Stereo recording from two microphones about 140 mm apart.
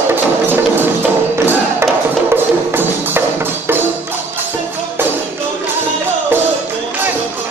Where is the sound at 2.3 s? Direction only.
15° right (ahead or behind).